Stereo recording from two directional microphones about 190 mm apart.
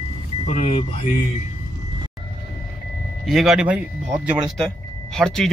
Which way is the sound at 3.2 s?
Centre (ahead or behind).